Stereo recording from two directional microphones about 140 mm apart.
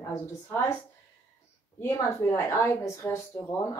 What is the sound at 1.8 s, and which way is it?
A woman's voice, 20° left (ahead or behind).